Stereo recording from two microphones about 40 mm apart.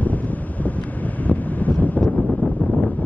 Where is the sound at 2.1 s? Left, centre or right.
Left.